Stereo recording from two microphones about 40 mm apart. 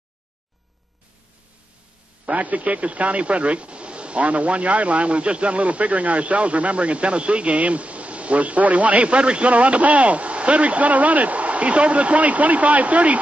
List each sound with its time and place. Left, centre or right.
2.2 s speech: right